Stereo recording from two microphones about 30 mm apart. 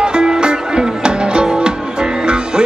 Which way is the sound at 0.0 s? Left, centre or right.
Right.